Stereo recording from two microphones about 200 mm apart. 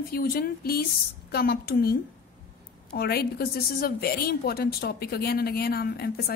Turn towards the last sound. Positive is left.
turn(degrees=50)  # may be behind; listen again after turning